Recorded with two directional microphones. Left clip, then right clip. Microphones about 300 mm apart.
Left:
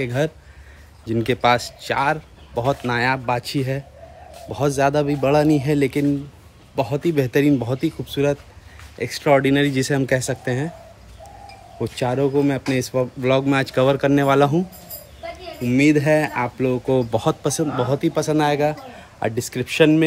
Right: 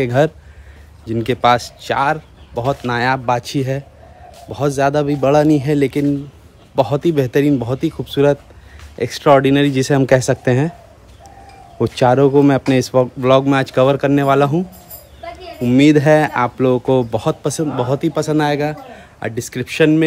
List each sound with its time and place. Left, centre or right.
0.0 s speech: centre
1.0 s speech: centre; by 10.7 s right
11.8 s speech: centre